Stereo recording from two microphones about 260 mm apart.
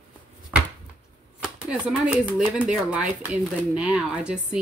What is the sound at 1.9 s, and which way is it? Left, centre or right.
Speech, centre.